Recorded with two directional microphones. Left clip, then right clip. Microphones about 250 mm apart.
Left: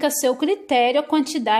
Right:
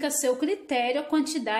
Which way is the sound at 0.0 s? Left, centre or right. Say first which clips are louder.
Left 6 dB; left.